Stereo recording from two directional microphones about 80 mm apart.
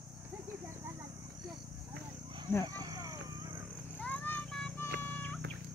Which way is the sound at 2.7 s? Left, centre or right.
Right.